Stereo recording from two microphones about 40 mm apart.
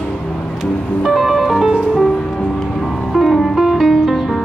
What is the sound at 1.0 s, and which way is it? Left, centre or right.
Music, centre.